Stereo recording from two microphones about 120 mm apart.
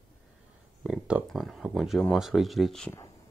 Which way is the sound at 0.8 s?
10° right (ahead or behind).